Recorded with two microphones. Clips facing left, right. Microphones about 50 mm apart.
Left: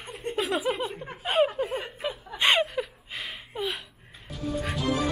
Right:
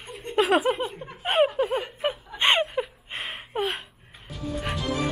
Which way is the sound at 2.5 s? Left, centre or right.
Centre.